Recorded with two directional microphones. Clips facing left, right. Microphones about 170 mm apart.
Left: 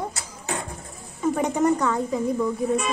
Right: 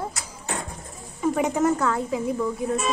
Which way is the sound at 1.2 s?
5° right (ahead or behind).